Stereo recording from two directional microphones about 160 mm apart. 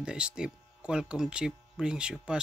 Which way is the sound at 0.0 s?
5° right (ahead or behind).